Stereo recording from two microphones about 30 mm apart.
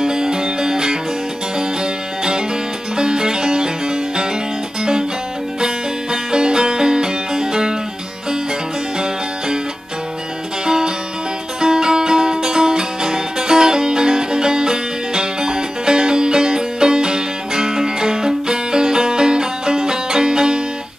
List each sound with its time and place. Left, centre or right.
0.0 s music: right
6.3 s music: right
10.6 s music: right